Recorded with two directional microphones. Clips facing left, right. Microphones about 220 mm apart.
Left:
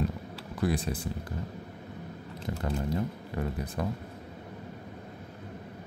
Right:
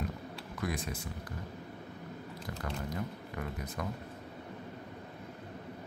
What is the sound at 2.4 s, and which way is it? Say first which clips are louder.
Speech: left 8 dB; 30° left (ahead or behind).